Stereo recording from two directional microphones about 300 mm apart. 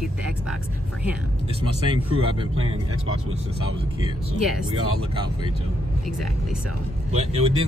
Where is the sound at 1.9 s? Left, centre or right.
Centre.